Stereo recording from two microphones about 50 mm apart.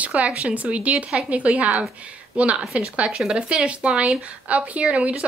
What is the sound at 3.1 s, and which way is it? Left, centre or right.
A woman's voice, centre.